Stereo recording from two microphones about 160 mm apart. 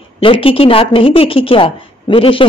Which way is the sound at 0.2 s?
35° left (ahead or behind).